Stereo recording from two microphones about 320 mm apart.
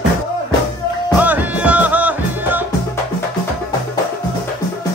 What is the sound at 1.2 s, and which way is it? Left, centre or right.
Music, centre.